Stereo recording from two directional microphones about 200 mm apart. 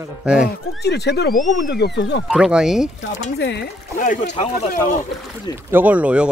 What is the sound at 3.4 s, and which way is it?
Speech, 60° left (ahead or behind).